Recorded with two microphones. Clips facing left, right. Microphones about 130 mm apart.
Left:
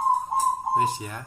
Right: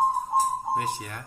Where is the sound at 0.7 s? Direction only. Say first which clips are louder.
Left 4 dB; 20° left (ahead or behind).